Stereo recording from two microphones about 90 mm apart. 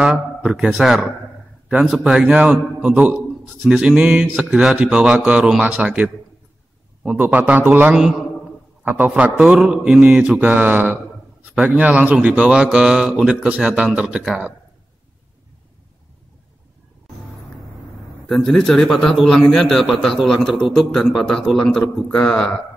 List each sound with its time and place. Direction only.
0.0 s a man's voice: 10° right (ahead or behind)
7.2 s a man's voice: 20° right (ahead or behind)
18.3 s a man's voice: 5° left (ahead or behind)